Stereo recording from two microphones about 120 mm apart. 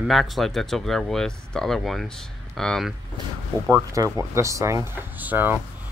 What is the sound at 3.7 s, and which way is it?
Speech, 25° right (ahead or behind).